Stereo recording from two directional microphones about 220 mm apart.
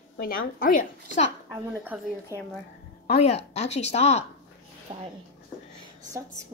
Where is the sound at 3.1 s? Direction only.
30° left (ahead or behind).